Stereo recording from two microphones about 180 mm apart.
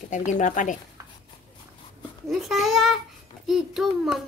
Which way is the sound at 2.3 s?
Centre (ahead or behind).